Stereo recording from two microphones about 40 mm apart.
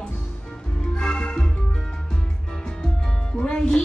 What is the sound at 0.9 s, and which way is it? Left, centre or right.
Music, centre.